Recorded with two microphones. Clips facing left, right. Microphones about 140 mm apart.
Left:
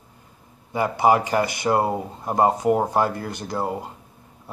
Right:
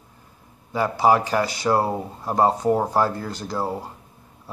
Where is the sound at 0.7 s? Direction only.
60° left (ahead or behind).